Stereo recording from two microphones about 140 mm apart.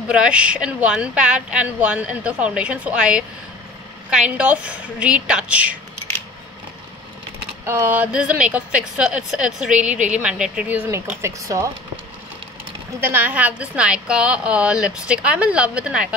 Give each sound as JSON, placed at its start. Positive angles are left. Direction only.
{"t": 0.1, "sound": "a woman's voice", "side_deg": -5}
{"t": 4.4, "sound": "a woman's voice", "side_deg": -10}
{"t": 7.6, "sound": "a woman's voice", "side_deg": -15}
{"t": 10.9, "sound": "speech", "side_deg": -20}
{"t": 13.0, "sound": "a woman's voice", "side_deg": -15}